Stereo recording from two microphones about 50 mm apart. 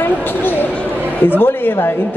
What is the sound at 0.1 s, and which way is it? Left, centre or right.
Speech, left.